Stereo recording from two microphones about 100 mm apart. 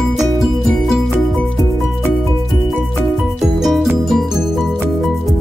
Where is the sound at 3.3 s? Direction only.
5° right (ahead or behind).